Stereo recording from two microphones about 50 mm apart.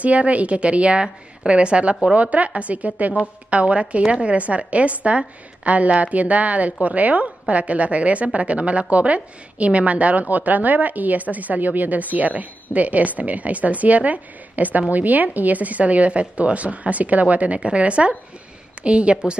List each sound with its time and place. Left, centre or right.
0.0 s a woman's voice: right